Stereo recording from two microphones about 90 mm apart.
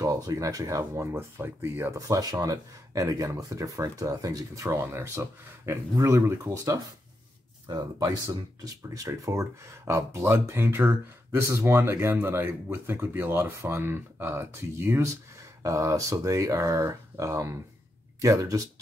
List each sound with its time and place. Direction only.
0.0 s speech: 35° right (ahead or behind)